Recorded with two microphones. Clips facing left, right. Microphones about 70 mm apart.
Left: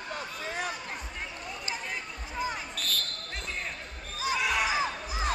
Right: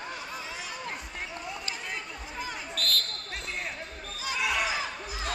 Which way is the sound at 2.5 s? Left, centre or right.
Centre.